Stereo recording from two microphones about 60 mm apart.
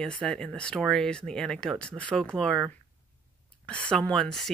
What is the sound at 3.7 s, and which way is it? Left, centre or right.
Speech, centre.